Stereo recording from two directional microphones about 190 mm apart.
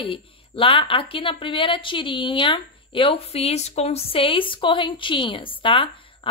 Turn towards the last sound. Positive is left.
turn(degrees=25)  # may be behind; listen again after turning